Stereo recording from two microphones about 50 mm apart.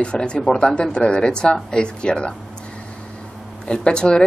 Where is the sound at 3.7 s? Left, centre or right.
Centre.